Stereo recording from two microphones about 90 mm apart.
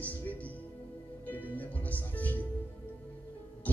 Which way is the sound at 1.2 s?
20° left (ahead or behind).